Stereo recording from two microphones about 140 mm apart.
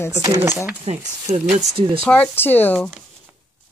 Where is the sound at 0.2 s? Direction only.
20° right (ahead or behind).